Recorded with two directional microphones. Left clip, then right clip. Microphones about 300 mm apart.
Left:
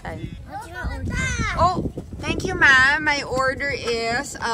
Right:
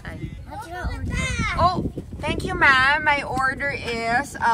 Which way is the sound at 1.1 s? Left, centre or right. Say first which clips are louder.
Even; left.